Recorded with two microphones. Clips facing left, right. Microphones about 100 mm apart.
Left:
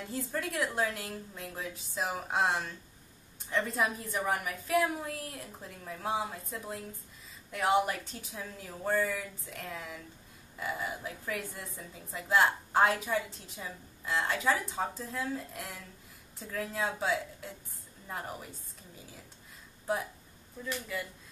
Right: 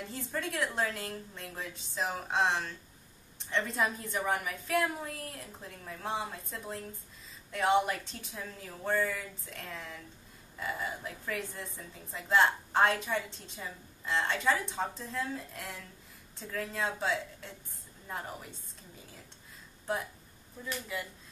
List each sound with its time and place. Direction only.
0.0 s a woman's voice: 5° left (ahead or behind)
20.6 s speech: 10° right (ahead or behind)